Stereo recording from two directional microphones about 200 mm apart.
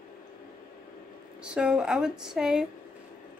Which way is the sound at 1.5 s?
5° right (ahead or behind).